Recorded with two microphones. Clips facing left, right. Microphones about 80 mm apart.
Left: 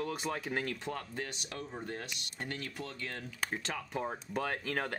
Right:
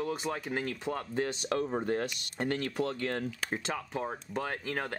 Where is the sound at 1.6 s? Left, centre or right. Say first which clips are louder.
Right 9 dB; right.